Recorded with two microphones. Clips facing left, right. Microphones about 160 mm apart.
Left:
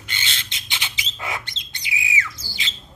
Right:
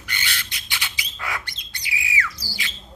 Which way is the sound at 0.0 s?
25° left (ahead or behind).